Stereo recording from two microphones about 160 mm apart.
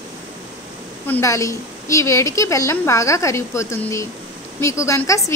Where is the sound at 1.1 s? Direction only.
20° left (ahead or behind).